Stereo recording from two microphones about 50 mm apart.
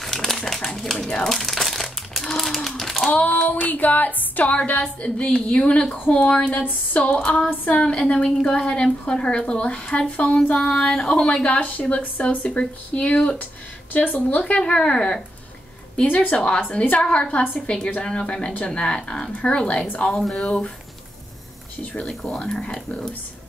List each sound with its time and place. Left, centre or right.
0.0 s typewriter: centre
0.5 s speech: centre
1.3 s crumpling: centre
3.1 s a woman's voice: left
3.6 s a sound: left
4.5 s a woman's voice: left
7.4 s a woman's voice: left
13.9 s a sound: left
14.4 s a woman's voice: centre
16.1 s a sound: left
16.3 s a woman's voice: centre
20.4 s a woman's voice: left
22.0 s speech: centre